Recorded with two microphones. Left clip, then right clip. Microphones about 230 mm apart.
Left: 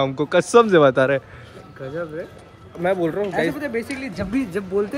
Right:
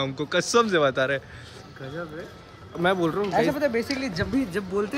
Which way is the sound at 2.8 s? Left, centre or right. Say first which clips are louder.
Left 2 dB; centre.